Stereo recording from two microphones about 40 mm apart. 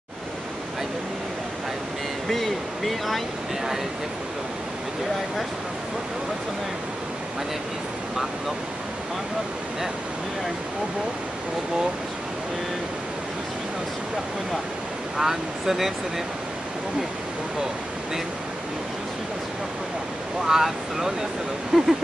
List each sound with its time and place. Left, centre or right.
2.2 s speech: centre
15.1 s speech: centre
20.4 s speech: centre